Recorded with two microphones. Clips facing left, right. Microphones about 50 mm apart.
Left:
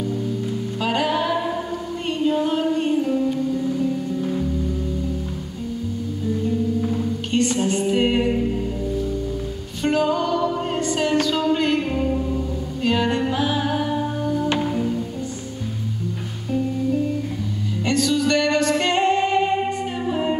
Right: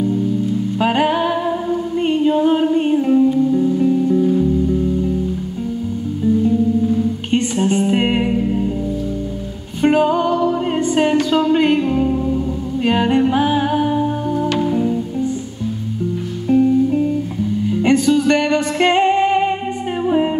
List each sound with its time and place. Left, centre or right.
0.7 s music: right
4.2 s music: centre
7.2 s music: right
8.3 s music: centre
9.8 s music: right
12.8 s music: right
14.7 s music: centre
16.5 s music: right
17.6 s music: right